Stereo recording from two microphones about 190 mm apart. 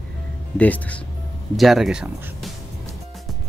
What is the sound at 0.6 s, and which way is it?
Speech, 5° left (ahead or behind).